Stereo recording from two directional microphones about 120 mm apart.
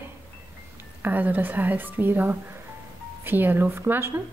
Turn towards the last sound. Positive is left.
turn(degrees=-20)  # may be behind; listen again after turning